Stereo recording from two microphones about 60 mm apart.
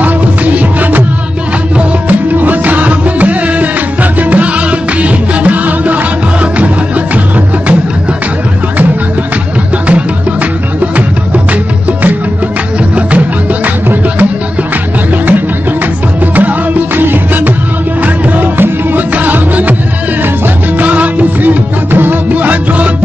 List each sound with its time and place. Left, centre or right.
0.0 s music: right
16.3 s music: right
20.8 s music: right